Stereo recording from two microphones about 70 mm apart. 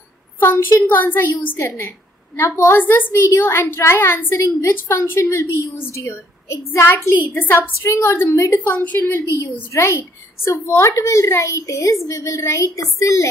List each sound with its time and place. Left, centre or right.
0.4 s a woman's voice: left
8.5 s a woman's voice: left
9.7 s a woman's voice: left